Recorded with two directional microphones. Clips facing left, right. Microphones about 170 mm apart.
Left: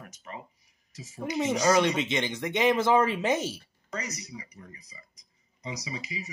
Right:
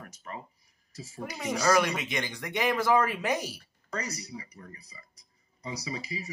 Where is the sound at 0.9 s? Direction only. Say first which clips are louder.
Left 3 dB; 30° right (ahead or behind).